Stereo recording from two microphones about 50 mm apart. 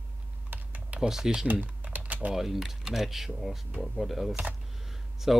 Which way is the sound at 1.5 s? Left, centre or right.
Right.